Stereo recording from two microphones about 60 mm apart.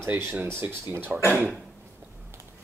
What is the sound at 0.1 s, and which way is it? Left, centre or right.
Speech, right.